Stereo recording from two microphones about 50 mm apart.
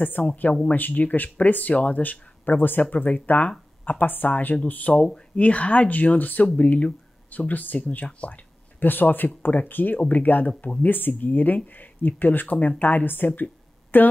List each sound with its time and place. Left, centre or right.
0.2 s speech: left
5.0 s speech: centre
5.4 s speech: left